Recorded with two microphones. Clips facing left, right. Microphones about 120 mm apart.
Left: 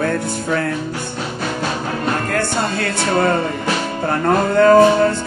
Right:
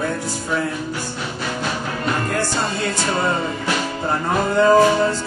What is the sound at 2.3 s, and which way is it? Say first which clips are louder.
Music: left 3 dB; 60° left (ahead or behind).